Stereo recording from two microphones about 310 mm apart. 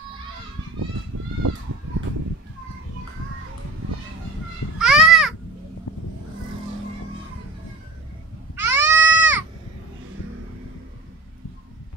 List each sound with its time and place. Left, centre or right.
4.7 s a sound: centre
8.5 s cat: centre
8.8 s goat: right